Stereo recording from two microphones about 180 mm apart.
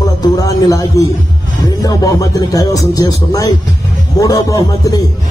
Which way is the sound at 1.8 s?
20° left (ahead or behind).